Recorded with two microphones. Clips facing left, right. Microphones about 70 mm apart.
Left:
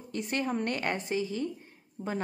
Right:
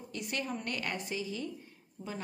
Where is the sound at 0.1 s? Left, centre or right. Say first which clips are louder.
Left 6 dB; left.